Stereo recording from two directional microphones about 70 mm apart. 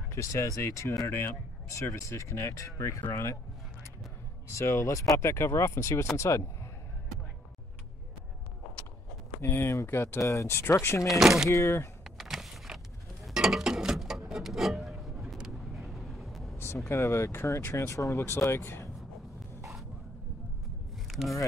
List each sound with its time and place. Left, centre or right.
0.1 s speech: left
4.5 s speech: left
9.4 s speech: left
11.1 s speech: centre
11.5 s speech: left
12.0 s a sound: centre
15.5 s vehicle: centre
16.5 s speech: left
21.2 s speech: centre